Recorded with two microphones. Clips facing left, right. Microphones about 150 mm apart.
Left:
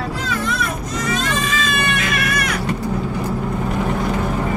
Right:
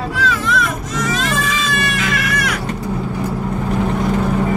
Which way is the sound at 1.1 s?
90° right.